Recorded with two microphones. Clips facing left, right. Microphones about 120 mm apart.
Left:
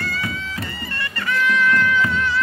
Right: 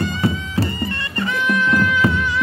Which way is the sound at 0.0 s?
25° right (ahead or behind).